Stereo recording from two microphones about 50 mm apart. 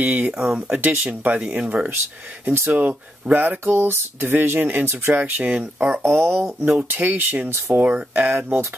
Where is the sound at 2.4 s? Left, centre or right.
Right.